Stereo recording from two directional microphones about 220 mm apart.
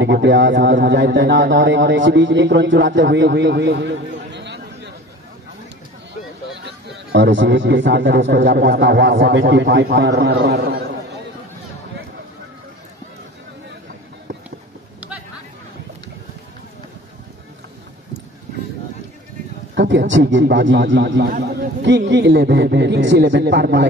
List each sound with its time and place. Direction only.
0.0 s a man's voice: 55° right (ahead or behind)
7.1 s a man's voice: 55° right (ahead or behind)
19.7 s a man's voice: 50° right (ahead or behind)